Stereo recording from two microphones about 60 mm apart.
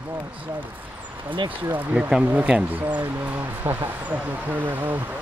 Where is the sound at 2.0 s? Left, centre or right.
Centre.